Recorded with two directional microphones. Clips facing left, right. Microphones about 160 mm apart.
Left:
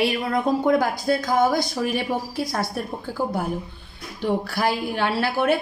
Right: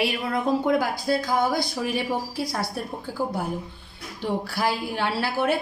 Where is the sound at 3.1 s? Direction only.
55° left (ahead or behind).